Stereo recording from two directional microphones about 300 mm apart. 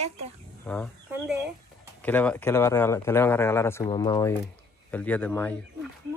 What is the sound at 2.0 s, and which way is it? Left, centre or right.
Speech, centre.